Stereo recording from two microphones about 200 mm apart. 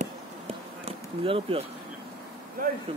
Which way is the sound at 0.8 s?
30° right (ahead or behind).